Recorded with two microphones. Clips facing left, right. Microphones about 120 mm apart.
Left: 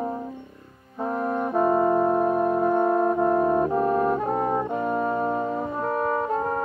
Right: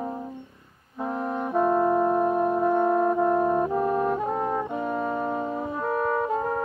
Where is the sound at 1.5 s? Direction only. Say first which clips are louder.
Left 1 dB; 5° left (ahead or behind).